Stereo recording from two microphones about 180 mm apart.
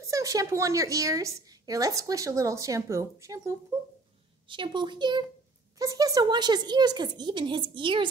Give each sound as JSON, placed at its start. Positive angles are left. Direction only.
{"t": 0.0, "sound": "a woman's voice", "side_deg": -20}